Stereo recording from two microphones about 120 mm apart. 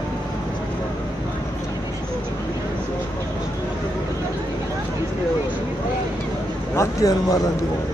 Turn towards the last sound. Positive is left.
turn(degrees=30)  # may be behind; listen again after turning